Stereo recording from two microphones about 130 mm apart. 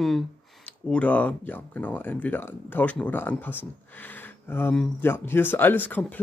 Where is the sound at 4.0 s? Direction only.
15° left (ahead or behind).